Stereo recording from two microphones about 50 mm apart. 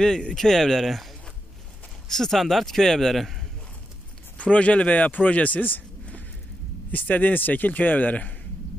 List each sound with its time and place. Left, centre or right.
0.0 s a man's voice: centre
4.4 s a man's voice: left